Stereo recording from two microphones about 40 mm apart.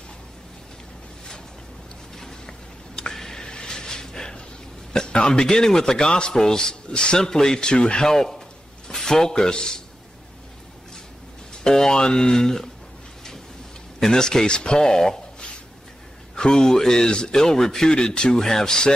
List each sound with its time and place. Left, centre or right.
2.1 s a sound: centre
5.1 s a man's voice: left
5.4 s a man's voice: centre
8.1 s a man's voice: centre
11.5 s a man's voice: centre
13.9 s a man's voice: centre
16.3 s a man's voice: centre